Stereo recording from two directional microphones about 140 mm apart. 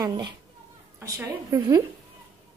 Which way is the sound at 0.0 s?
30° right (ahead or behind).